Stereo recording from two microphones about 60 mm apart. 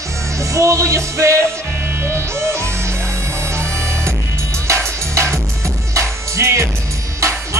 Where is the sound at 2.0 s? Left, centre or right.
Right.